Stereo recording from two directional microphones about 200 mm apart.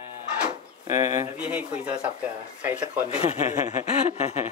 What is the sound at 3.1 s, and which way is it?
Speech, 30° left (ahead or behind).